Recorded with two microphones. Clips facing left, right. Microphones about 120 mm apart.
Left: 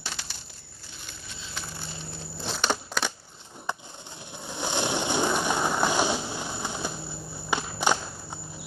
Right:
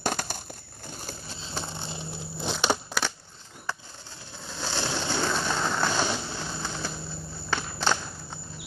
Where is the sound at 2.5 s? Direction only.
5° right (ahead or behind).